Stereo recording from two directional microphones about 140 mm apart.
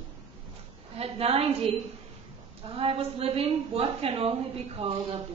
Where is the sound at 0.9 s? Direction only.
45° right (ahead or behind).